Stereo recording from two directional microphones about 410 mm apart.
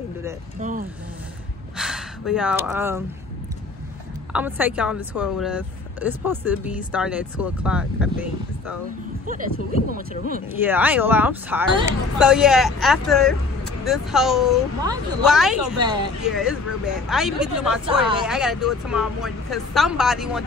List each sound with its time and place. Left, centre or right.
0.6 s vehicle: centre
1.8 s speech: centre
4.3 s speech: centre
9.8 s speech: centre
10.6 s speech: centre